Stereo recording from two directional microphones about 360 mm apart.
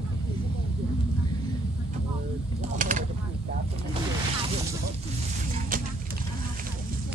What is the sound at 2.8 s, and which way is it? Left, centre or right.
Speech, right.